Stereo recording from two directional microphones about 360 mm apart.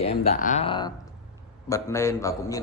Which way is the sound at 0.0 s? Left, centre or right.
Centre.